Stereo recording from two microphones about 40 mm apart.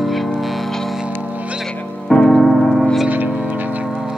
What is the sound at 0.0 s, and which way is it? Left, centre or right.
Music, centre.